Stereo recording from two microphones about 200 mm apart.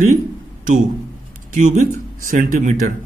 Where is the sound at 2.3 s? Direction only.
40° right (ahead or behind).